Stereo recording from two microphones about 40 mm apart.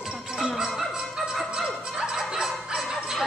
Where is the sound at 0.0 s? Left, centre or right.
Centre.